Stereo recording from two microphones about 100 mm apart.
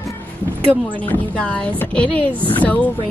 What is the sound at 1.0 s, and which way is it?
Speech, 15° left (ahead or behind).